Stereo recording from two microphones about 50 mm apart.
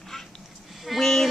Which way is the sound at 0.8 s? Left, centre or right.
Centre.